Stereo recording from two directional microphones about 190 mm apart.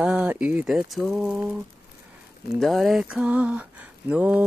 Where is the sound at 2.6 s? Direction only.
Centre (ahead or behind).